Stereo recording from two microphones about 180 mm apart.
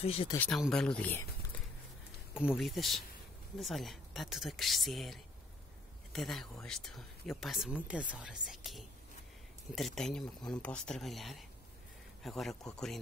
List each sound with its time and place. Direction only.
0.0 s speech: 35° left (ahead or behind)
0.4 s speech: centre (ahead or behind)
2.3 s speech: 5° right (ahead or behind)